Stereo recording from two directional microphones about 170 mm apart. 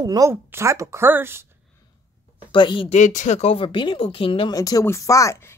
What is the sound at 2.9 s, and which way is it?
Speech, 45° left (ahead or behind).